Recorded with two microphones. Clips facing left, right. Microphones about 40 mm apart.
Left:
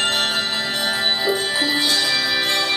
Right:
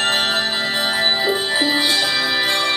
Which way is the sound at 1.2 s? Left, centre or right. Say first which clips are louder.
Right 2 dB; centre.